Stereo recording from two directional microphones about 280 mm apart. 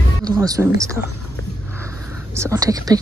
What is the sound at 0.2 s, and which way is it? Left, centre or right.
Speech, centre.